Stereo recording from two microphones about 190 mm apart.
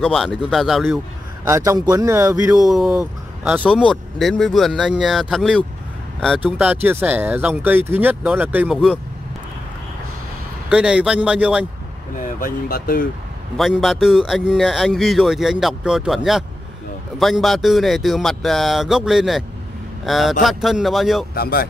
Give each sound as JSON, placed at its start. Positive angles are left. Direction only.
{"t": 0.0, "sound": "speech", "side_deg": 0}
{"t": 1.5, "sound": "speech", "side_deg": -15}
{"t": 2.7, "sound": "speech", "side_deg": 0}
{"t": 6.6, "sound": "speech", "side_deg": -10}
{"t": 10.7, "sound": "speech", "side_deg": -5}
{"t": 12.2, "sound": "speech", "side_deg": 45}
{"t": 13.6, "sound": "speech", "side_deg": 0}
{"t": 17.2, "sound": "speech", "side_deg": 0}
{"t": 21.4, "sound": "speech", "side_deg": 55}